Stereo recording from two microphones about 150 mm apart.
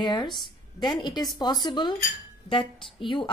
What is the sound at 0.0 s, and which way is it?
A woman's voice, 30° left (ahead or behind).